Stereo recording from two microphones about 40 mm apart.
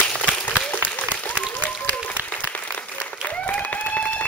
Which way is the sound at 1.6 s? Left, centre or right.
Left.